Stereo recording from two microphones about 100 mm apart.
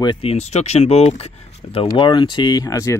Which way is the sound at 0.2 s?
90° left.